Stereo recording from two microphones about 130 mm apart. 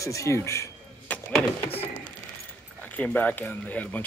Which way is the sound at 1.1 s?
10° left (ahead or behind).